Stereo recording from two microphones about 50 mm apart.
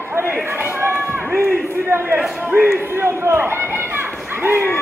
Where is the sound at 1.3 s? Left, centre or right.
Right.